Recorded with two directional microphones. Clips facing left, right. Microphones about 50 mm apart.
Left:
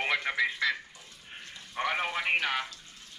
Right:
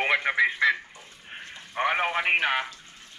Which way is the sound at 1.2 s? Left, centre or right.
Right.